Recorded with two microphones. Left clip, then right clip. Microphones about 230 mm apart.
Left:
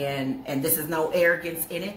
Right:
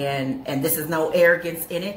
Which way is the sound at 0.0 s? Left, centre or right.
Centre.